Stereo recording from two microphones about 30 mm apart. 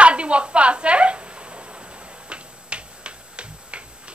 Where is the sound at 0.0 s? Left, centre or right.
Right.